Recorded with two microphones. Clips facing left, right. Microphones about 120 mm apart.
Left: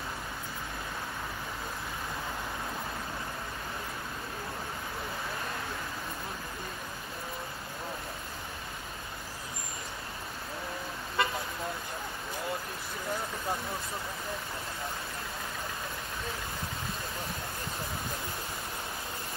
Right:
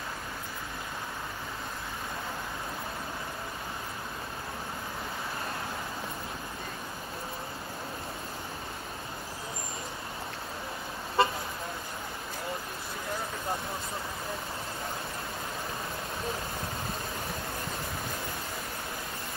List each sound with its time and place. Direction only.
11.2 s vehicle: 30° right (ahead or behind)